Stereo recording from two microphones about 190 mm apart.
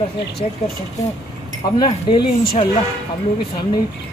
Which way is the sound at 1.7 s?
25° left (ahead or behind).